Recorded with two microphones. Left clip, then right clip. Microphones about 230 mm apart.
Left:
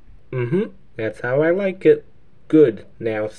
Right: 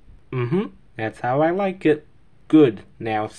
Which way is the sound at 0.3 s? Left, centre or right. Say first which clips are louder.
Left 2 dB; right.